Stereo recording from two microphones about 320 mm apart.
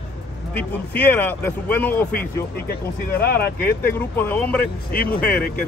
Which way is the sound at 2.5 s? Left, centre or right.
Left.